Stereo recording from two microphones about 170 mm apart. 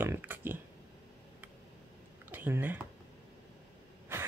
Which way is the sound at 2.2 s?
10° right (ahead or behind).